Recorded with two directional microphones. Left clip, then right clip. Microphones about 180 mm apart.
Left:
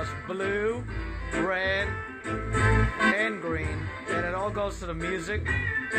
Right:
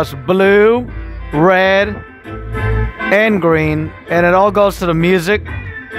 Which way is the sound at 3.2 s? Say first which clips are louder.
Right 17 dB; 50° right (ahead or behind).